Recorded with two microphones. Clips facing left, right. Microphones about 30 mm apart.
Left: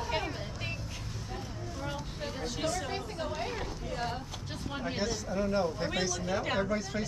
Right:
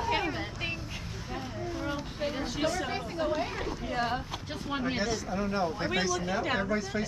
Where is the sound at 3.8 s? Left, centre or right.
Right; by 7.1 s centre.